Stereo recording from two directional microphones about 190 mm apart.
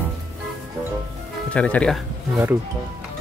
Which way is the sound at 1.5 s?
5° left (ahead or behind).